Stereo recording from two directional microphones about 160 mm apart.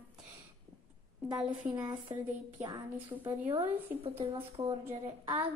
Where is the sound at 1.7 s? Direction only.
25° right (ahead or behind).